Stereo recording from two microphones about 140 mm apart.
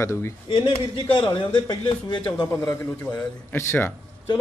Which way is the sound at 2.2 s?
15° left (ahead or behind).